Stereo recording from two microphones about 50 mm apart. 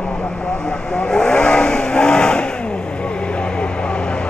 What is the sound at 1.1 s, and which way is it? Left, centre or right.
Vehicle, centre.